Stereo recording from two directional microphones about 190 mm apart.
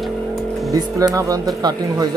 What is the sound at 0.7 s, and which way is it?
Speech, 20° right (ahead or behind).